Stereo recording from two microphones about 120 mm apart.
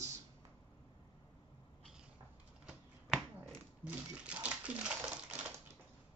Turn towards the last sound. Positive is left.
turn(degrees=-10)  # may be behind; listen again after turning